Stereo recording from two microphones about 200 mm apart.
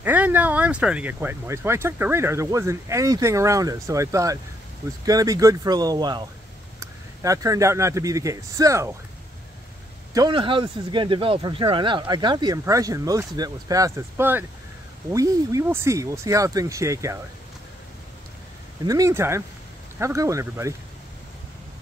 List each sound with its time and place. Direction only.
0.0 s a man's voice: 10° right (ahead or behind)
10.1 s speech: 25° right (ahead or behind)
18.9 s speech: 15° right (ahead or behind)